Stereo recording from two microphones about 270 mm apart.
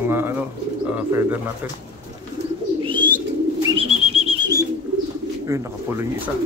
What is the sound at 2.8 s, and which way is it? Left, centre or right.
Bird, centre.